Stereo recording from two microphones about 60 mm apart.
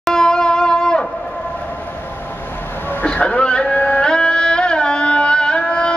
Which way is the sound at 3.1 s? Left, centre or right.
Centre.